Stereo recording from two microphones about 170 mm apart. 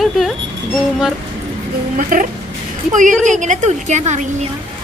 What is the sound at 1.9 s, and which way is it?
A woman's voice, 50° right (ahead or behind).